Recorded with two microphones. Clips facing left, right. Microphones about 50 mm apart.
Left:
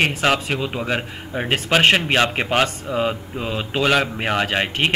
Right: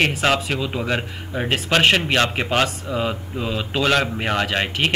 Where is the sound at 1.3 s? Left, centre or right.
Left.